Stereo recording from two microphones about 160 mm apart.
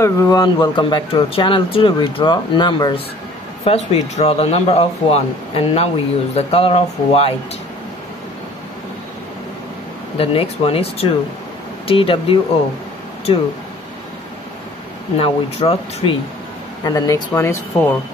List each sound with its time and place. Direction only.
0.0 s speech: 20° left (ahead or behind)
3.6 s speech: 40° left (ahead or behind)
10.1 s speech: 35° left (ahead or behind)
15.1 s speech: 35° left (ahead or behind)
16.8 s speech: 20° left (ahead or behind)